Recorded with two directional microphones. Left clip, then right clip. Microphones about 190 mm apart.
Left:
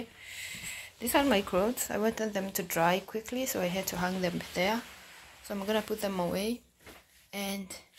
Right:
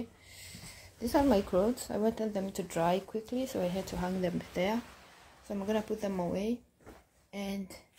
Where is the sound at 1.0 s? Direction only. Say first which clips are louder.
Left 1 dB; 5° left (ahead or behind).